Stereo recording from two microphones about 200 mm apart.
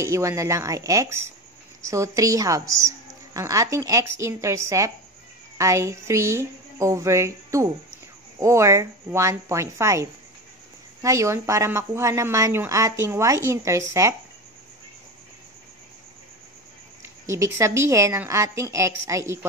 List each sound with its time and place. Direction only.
0.0 s a woman's voice: 15° right (ahead or behind)
17.3 s a woman's voice: 15° right (ahead or behind)